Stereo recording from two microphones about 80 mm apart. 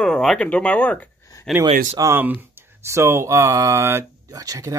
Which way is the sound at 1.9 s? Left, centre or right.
Right.